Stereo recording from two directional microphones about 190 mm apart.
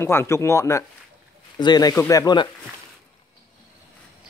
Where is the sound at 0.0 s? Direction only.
10° left (ahead or behind).